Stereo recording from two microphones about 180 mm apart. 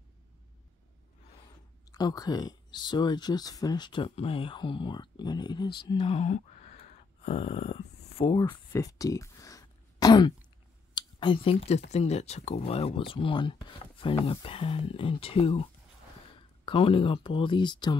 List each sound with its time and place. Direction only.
1.9 s speech: 20° left (ahead or behind)